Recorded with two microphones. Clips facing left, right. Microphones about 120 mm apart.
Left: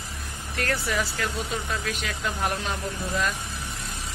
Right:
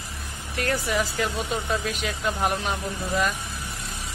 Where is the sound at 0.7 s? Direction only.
15° right (ahead or behind).